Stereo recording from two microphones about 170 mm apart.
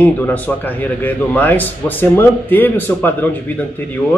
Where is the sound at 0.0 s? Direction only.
10° left (ahead or behind).